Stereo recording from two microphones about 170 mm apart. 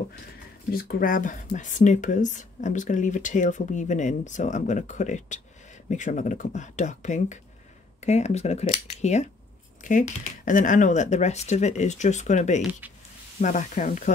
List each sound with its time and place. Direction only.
0.7 s speech: 60° left (ahead or behind)